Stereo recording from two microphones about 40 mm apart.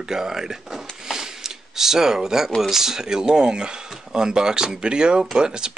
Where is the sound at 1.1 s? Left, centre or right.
Centre.